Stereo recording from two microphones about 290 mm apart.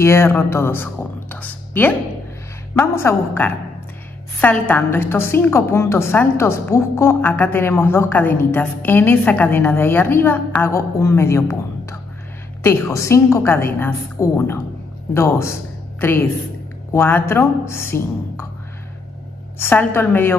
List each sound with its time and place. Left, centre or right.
0.0 s a woman's voice: centre
1.3 s a sound: centre
2.8 s a woman's voice: centre
19.6 s a woman's voice: centre